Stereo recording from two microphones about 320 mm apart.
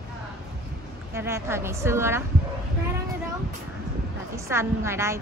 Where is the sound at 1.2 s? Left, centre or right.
Centre.